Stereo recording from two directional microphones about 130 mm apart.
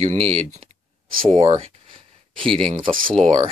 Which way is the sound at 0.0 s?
55° right (ahead or behind).